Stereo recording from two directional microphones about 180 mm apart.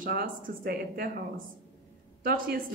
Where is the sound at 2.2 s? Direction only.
55° right (ahead or behind).